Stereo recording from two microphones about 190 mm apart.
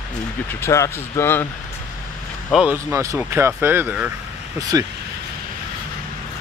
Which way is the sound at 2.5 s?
5° right (ahead or behind).